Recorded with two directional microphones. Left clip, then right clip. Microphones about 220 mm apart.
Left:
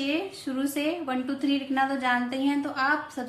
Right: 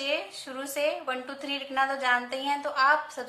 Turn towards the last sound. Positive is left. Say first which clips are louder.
# right 3 dB
turn(degrees=-20)  # may be behind; listen again after turning